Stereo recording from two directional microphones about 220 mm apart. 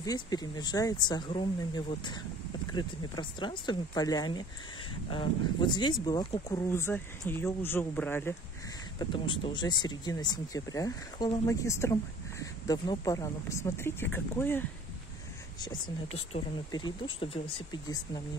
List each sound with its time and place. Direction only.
0.0 s speech: 15° left (ahead or behind)
9.1 s speech: 20° left (ahead or behind)
16.3 s speech: 20° left (ahead or behind)